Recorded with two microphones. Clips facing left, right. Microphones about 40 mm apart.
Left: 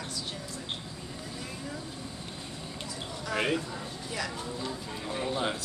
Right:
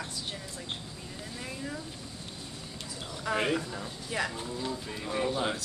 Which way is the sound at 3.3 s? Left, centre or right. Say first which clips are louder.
Left 1 dB; centre.